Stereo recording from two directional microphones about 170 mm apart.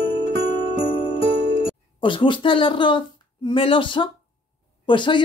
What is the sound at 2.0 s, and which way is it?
Speech, 30° left (ahead or behind).